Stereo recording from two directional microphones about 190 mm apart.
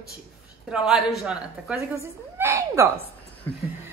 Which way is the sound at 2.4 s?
15° right (ahead or behind).